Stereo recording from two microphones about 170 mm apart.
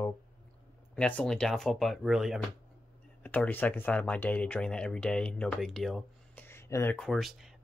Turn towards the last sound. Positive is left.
turn(degrees=0)  # may be behind; listen again after turning